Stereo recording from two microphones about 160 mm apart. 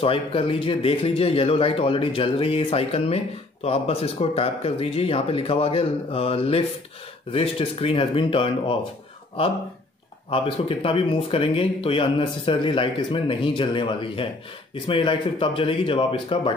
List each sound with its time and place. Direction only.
0.0 s speech: 35° left (ahead or behind)
10.3 s speech: 35° left (ahead or behind)